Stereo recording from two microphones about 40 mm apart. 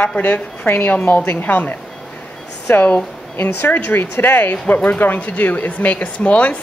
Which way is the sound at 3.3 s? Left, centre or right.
Left.